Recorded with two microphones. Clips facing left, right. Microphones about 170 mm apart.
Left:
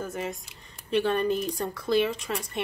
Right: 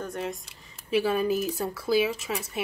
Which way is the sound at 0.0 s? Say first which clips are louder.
Even; centre (ahead or behind).